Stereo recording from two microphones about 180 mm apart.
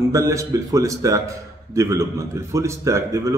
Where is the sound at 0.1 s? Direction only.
15° right (ahead or behind).